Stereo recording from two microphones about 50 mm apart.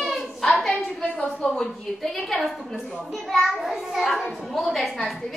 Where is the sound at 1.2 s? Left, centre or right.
Centre.